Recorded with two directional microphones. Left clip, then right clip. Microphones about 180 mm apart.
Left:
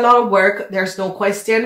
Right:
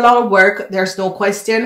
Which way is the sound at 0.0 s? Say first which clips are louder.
Right 2 dB; 30° right (ahead or behind).